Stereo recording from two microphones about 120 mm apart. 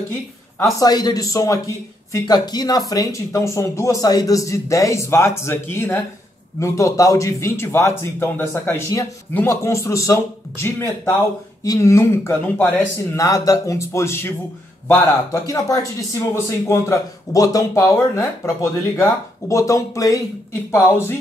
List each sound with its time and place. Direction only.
0.7 s speech: 35° left (ahead or behind); by 13.2 s 15° left (ahead or behind)
13.2 s speech: 30° left (ahead or behind)
15.3 s speech: 30° left (ahead or behind)